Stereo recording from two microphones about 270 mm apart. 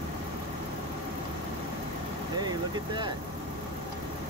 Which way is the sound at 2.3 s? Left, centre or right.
Centre.